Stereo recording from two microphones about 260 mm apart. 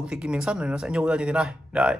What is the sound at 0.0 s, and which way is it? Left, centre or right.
A man's voice, centre.